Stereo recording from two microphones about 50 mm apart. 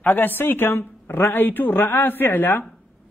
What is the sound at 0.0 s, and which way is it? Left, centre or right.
A woman's voice, left.